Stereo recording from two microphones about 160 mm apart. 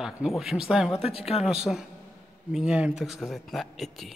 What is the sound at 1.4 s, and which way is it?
A man's voice, 5° right (ahead or behind).